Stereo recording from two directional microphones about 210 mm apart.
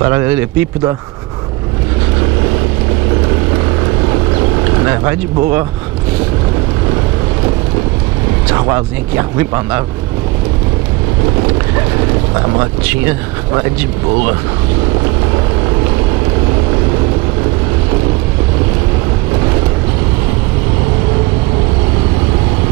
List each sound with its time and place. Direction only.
0.1 s speech: 10° right (ahead or behind)
4.8 s speech: 10° right (ahead or behind)
8.5 s speech: 15° right (ahead or behind)
12.5 s speech: 15° right (ahead or behind)